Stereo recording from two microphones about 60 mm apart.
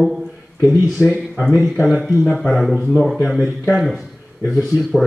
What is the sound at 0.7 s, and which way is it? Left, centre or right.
Speech, right.